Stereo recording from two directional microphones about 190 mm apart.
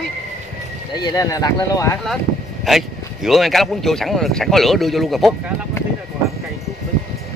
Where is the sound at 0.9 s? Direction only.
20° left (ahead or behind).